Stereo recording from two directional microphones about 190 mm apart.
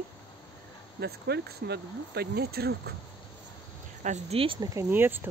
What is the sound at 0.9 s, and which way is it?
Speech, 60° right (ahead or behind).